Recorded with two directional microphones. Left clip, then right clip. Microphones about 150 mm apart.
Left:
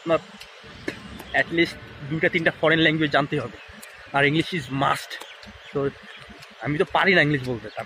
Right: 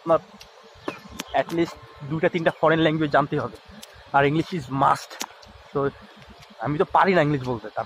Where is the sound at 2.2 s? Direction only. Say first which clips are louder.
Even; 60° left (ahead or behind).